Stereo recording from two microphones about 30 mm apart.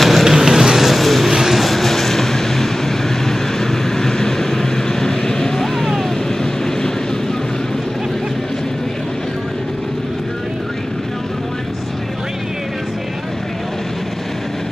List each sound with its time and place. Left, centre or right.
0.0 s vehicle: centre
1.3 s vehicle: centre
1.6 s vehicle: centre